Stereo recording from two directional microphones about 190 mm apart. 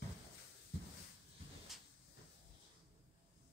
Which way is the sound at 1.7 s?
Centre (ahead or behind).